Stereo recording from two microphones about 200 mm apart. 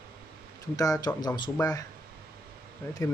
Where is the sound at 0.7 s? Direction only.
15° left (ahead or behind).